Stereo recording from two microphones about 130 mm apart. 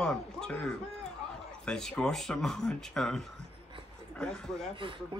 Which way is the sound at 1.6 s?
5° left (ahead or behind).